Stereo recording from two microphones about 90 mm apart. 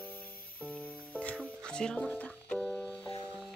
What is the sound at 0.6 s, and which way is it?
Music, 15° left (ahead or behind).